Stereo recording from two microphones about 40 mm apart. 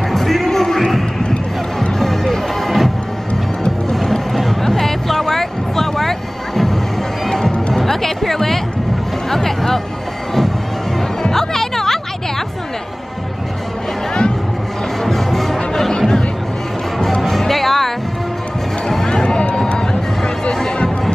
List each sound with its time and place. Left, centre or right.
0.1 s music: centre
3.9 s a sound: centre
7.2 s music: centre
11.2 s music: centre
15.0 s music: centre
17.2 s music: centre
19.2 s a sound: left